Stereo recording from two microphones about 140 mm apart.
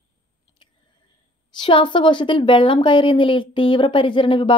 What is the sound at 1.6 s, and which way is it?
A woman's voice, 35° left (ahead or behind).